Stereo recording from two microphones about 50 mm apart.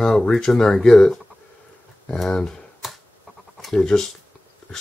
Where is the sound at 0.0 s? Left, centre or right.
Centre.